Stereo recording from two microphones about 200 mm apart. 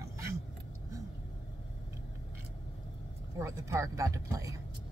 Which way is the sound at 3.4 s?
15° right (ahead or behind).